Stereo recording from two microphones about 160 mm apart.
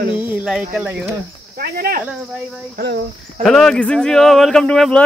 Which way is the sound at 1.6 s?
70° right (ahead or behind).